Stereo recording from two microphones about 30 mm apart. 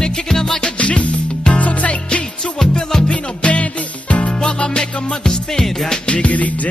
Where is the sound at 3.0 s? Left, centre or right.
Left.